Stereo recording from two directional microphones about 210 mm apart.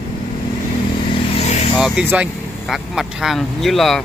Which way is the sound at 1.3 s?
30° left (ahead or behind).